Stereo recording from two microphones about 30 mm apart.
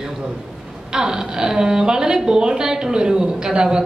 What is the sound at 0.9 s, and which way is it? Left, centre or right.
A woman's voice, right.